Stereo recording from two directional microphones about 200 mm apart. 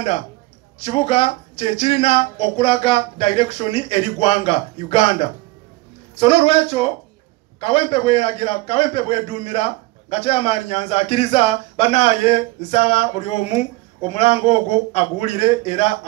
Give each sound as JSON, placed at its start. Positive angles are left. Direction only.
{"t": 0.7, "sound": "a man's voice", "side_deg": 30}